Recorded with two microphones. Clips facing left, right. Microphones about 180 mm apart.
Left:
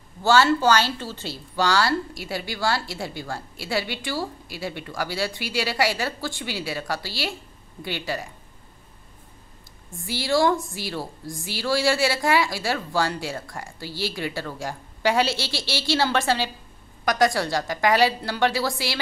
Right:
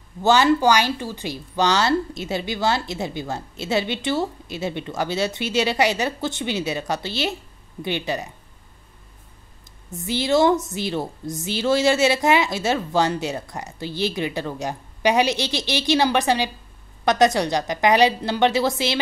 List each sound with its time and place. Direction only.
0.2 s a woman's voice: 20° right (ahead or behind)
9.8 s a woman's voice: 20° right (ahead or behind)